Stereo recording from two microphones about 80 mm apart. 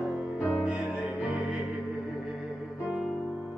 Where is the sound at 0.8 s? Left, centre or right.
Left.